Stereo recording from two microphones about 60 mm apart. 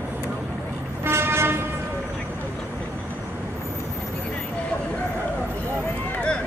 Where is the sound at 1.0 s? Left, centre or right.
Right.